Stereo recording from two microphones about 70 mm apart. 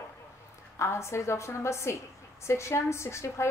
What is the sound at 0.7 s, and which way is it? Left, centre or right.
A woman's voice, left.